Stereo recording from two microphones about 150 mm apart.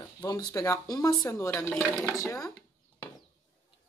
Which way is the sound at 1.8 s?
5° left (ahead or behind).